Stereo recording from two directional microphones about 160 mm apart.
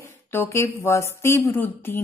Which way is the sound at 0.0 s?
15° left (ahead or behind).